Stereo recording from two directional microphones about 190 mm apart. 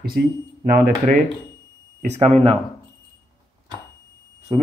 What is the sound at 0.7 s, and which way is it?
Speech, 45° right (ahead or behind).